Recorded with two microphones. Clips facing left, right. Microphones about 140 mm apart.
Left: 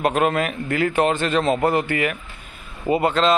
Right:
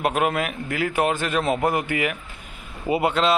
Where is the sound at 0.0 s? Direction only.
10° right (ahead or behind).